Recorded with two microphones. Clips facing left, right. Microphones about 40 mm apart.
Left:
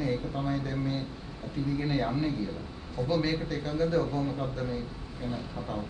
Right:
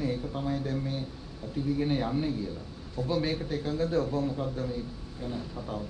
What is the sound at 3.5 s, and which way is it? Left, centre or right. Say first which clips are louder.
Speech: left 1 dB; centre.